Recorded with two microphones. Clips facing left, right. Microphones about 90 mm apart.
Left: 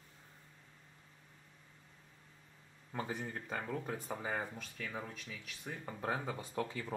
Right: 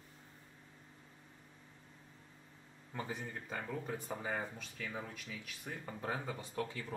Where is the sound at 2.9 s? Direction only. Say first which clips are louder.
Left 2 dB; 15° left (ahead or behind).